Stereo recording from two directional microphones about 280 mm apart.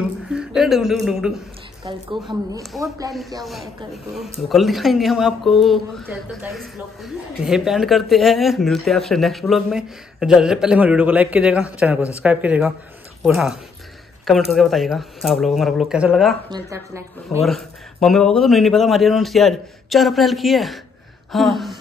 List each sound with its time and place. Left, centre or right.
0.3 s a woman's voice: centre
1.9 s speech: centre
3.4 s a woman's voice: centre
16.4 s speech: centre
17.5 s a woman's voice: centre